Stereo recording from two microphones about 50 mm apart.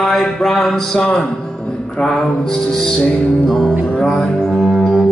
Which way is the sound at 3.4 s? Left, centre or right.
Centre.